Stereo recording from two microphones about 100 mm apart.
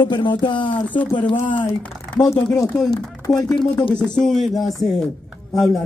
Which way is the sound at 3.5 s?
55° left (ahead or behind).